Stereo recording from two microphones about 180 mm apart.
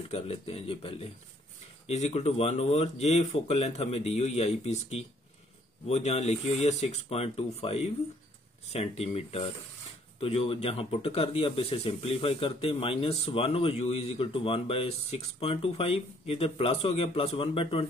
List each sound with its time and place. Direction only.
0.1 s speech: 35° left (ahead or behind)